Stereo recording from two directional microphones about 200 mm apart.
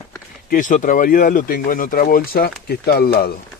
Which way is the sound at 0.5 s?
40° left (ahead or behind).